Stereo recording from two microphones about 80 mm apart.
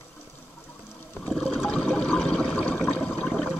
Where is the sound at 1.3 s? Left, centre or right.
Centre.